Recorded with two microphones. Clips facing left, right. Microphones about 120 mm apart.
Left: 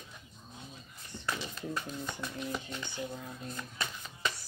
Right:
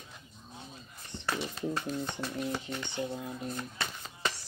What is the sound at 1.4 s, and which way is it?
Speech, 30° right (ahead or behind).